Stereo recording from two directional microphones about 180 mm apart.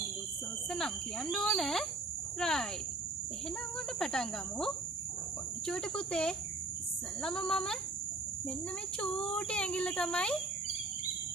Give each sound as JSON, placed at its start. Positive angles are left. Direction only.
{"t": 0.7, "sound": "a child's voice", "side_deg": 0}
{"t": 4.0, "sound": "a child's voice", "side_deg": 5}
{"t": 9.0, "sound": "a child's voice", "side_deg": 5}